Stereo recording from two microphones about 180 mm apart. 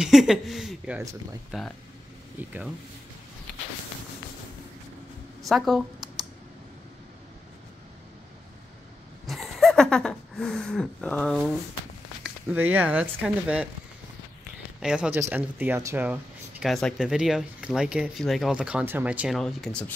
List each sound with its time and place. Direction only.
0.0 s speech: centre (ahead or behind)
5.4 s a woman's voice: centre (ahead or behind)
9.2 s a sound: centre (ahead or behind)
12.2 s speech: 10° right (ahead or behind)
14.8 s speech: 5° right (ahead or behind)